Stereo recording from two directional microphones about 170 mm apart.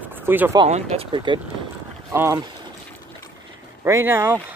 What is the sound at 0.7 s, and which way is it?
Speech, 35° right (ahead or behind).